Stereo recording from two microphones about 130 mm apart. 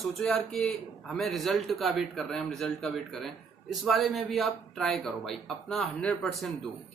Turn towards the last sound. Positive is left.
turn(degrees=5)  # may be behind; listen again after turning